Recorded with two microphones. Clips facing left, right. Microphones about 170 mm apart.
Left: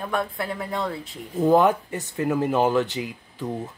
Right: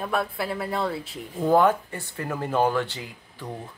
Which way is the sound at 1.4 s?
20° left (ahead or behind).